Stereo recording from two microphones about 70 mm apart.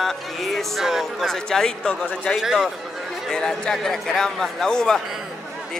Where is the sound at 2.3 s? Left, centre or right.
Centre.